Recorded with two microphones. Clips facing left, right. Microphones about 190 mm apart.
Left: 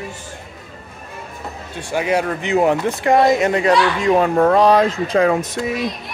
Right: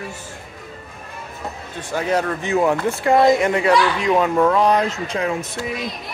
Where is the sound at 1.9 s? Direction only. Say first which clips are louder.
Left 2 dB; 15° left (ahead or behind).